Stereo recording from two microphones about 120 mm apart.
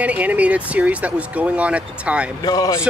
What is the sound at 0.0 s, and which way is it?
Speech, 10° right (ahead or behind).